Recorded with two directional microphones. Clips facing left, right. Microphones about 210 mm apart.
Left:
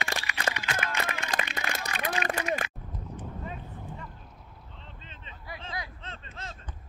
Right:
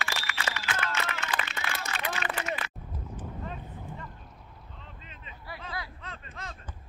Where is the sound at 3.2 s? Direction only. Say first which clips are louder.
Right 1 dB; centre (ahead or behind).